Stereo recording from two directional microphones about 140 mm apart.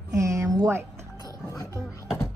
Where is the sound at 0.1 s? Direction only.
20° right (ahead or behind).